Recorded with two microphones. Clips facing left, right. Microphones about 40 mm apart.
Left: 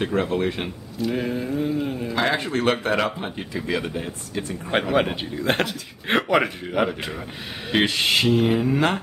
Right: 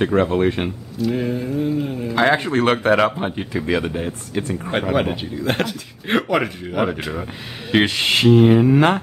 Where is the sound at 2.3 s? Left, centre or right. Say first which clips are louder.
Right 5 dB; right.